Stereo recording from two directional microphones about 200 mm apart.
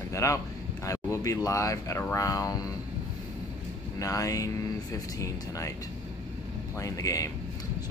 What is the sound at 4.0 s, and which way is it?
Speech, 15° left (ahead or behind).